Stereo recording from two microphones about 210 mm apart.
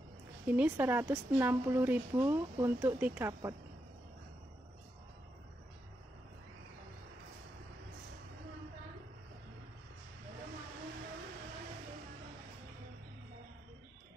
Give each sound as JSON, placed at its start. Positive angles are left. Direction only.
{"t": 0.5, "sound": "a woman's voice", "side_deg": -10}